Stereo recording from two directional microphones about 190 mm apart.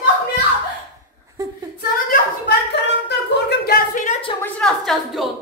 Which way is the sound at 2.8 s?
65° left (ahead or behind).